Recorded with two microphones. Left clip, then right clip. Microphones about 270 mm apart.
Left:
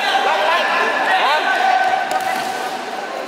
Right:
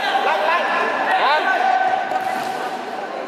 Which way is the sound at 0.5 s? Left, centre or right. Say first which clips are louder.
Left 2 dB; centre.